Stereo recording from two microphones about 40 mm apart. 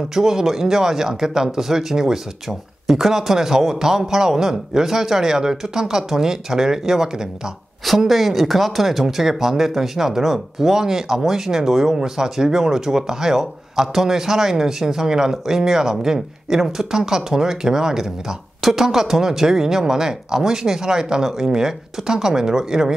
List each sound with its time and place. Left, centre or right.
0.1 s speech: centre
8.1 s speech: centre